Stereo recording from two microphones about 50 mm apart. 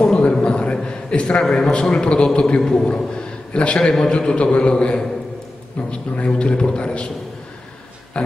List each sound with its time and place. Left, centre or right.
0.0 s a sound: left
1.4 s a man's voice: centre
3.5 s a man's voice: left